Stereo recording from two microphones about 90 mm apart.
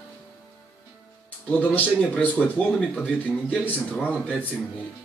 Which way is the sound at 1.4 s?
20° left (ahead or behind).